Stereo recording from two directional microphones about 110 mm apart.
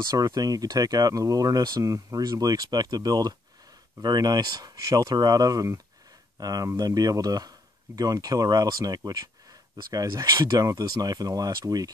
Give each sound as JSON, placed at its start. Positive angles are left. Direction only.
{"t": 0.1, "sound": "speech", "side_deg": -35}